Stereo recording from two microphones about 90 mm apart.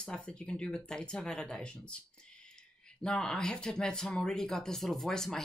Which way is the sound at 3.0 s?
10° left (ahead or behind).